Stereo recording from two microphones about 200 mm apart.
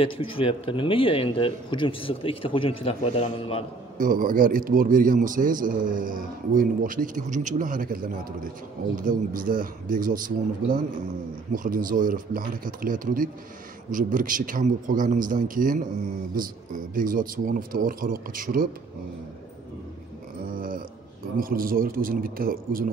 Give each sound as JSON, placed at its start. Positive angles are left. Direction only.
{"t": 0.0, "sound": "a man's voice", "side_deg": 25}
{"t": 4.0, "sound": "a man's voice", "side_deg": -45}
{"t": 20.5, "sound": "a sound", "side_deg": -45}
{"t": 21.4, "sound": "a man's voice", "side_deg": -45}